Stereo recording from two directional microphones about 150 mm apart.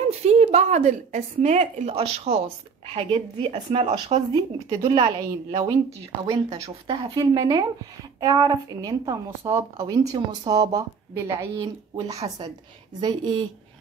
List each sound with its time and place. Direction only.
0.2 s a woman's voice: 45° right (ahead or behind)
3.5 s a woman's voice: 50° right (ahead or behind)
4.3 s speech: 30° right (ahead or behind)